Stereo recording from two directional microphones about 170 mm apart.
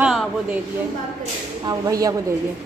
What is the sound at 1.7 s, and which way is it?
Speech, 20° right (ahead or behind).